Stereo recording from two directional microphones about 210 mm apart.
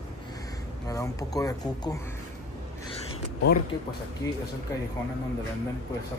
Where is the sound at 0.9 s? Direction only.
15° left (ahead or behind).